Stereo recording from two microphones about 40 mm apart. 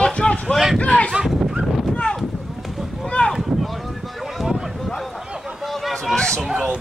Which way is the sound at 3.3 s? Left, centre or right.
Centre.